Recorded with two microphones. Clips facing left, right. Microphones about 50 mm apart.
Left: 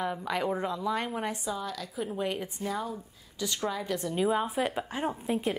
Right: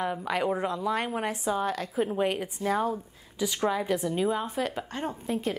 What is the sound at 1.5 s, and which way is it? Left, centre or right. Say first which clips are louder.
A woman's voice: right 6 dB; right.